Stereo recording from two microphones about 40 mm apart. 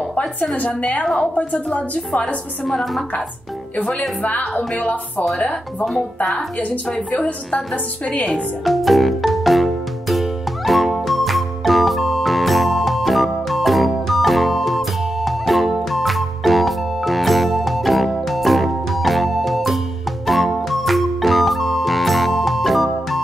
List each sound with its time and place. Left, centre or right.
0.6 s a woman's voice: left
2.6 s a woman's voice: centre
4.2 s a woman's voice: left
8.3 s music: centre